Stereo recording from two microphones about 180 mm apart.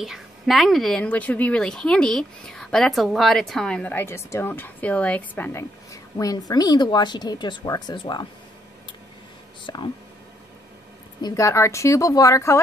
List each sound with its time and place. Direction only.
0.0 s a woman's voice: centre (ahead or behind); by 8.3 s 25° left (ahead or behind)
9.7 s speech: 25° left (ahead or behind)
11.1 s a woman's voice: 20° left (ahead or behind)